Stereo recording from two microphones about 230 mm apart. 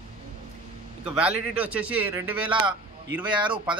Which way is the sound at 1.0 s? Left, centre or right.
Centre.